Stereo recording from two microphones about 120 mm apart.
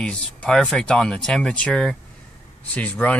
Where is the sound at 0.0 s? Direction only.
10° left (ahead or behind).